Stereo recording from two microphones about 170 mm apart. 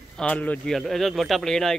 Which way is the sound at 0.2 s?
10° left (ahead or behind).